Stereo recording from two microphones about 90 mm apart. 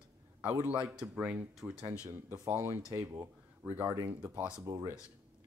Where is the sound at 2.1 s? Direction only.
25° right (ahead or behind).